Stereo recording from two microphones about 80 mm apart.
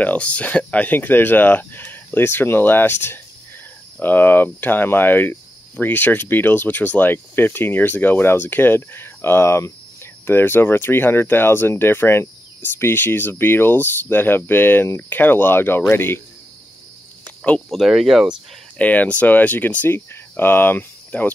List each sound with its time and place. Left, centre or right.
0.0 s speech: centre
17.6 s speech: centre
18.8 s speech: centre